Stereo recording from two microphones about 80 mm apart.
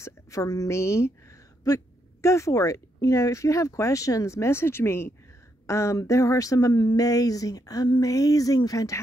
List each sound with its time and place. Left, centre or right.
0.0 s a woman's voice: left
1.6 s speech: left